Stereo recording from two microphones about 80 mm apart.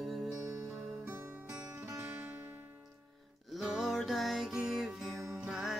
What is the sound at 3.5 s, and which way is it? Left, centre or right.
Music, centre.